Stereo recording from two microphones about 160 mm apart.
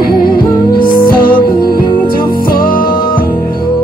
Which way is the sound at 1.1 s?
65° left (ahead or behind).